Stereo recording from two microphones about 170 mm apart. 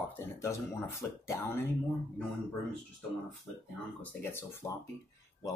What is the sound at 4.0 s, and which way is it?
Speech, 15° left (ahead or behind).